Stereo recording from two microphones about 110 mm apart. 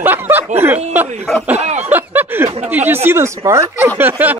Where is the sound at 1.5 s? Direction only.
90° right.